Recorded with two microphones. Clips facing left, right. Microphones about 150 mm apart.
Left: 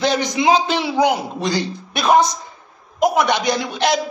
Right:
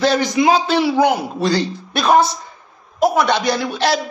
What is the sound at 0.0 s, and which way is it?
Speech, 20° left (ahead or behind).